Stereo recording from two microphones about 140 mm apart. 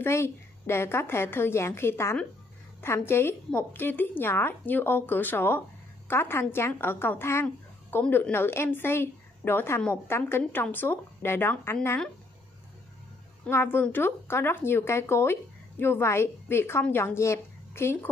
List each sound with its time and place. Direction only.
0.0 s a woman's voice: 20° left (ahead or behind)
13.5 s a woman's voice: 15° left (ahead or behind)